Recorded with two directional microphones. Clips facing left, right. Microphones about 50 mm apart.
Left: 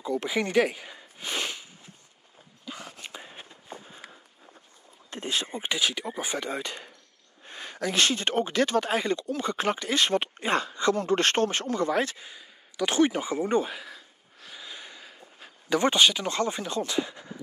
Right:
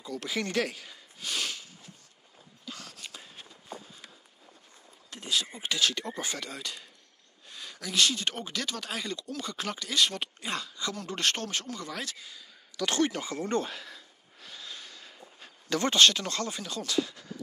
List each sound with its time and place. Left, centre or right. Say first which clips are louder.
0.0 s a sound: left 6 dB; left
2.6 s walk: left 3 dB; left
5.1 s speech: left 2 dB; left
5.7 s speech: left 1 dB; centre